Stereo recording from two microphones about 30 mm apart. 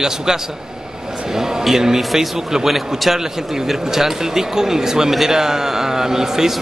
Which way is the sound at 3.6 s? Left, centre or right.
Centre.